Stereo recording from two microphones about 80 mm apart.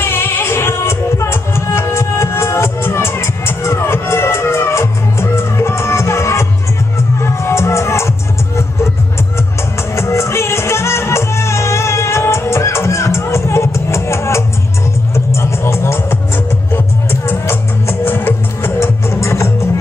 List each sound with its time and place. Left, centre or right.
0.0 s music: left
9.9 s music: left